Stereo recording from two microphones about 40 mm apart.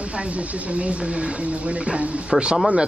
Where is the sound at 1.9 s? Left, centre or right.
Right.